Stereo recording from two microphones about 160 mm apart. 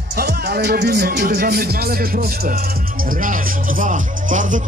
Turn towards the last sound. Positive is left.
turn(degrees=-55)  # may be behind; listen again after turning